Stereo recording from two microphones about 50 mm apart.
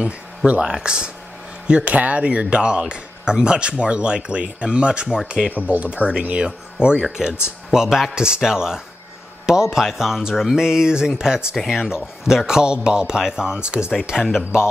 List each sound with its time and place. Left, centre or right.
0.5 s speech: centre
5.6 s speech: left
6.2 s speech: right
7.0 s speech: centre